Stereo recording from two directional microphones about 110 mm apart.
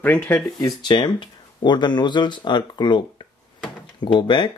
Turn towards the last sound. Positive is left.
turn(degrees=45)  # may be behind; listen again after turning